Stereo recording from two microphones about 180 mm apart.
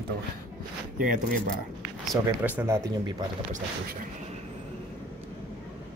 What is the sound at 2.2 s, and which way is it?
Speech, 20° right (ahead or behind).